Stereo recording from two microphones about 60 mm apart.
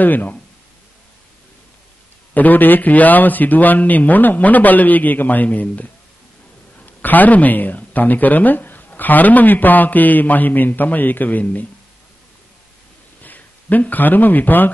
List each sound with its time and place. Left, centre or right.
0.0 s speech: left
2.3 s speech: left
6.9 s speech: left
13.2 s speech: left